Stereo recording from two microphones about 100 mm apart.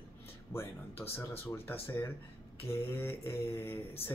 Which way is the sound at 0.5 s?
25° left (ahead or behind).